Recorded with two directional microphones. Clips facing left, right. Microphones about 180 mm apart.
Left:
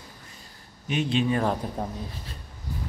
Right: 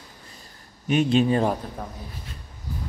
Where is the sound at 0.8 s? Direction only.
50° right (ahead or behind).